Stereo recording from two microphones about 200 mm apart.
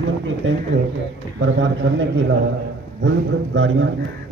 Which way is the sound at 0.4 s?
70° right (ahead or behind).